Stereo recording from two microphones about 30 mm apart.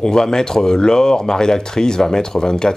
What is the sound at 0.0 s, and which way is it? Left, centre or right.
Speech, left.